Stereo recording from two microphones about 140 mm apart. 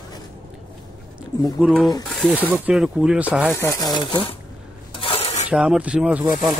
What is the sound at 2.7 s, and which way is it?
Speech, 5° right (ahead or behind).